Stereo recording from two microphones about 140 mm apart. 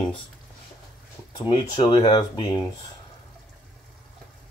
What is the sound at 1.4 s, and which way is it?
Speech, 35° left (ahead or behind).